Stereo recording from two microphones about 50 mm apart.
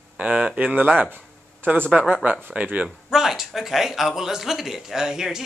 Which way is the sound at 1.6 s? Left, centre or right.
Right.